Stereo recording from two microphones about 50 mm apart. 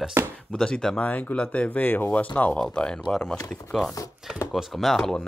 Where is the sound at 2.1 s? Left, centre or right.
Left.